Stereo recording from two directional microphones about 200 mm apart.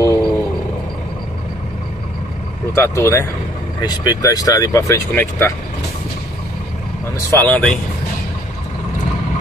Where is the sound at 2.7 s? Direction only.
10° left (ahead or behind).